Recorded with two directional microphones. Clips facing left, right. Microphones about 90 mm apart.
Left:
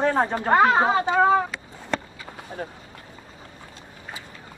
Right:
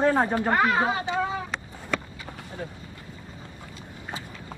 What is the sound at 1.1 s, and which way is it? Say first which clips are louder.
Speech: left 9 dB; 60° left (ahead or behind).